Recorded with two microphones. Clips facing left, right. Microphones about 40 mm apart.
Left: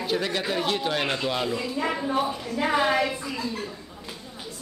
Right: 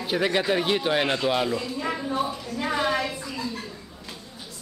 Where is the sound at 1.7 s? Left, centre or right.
Centre.